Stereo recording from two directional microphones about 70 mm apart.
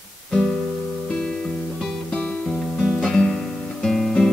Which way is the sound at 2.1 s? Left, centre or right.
Centre.